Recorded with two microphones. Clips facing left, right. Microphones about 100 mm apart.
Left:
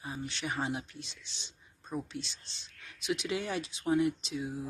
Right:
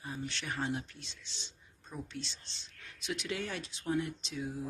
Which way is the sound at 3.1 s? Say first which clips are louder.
Left 4 dB; 10° left (ahead or behind).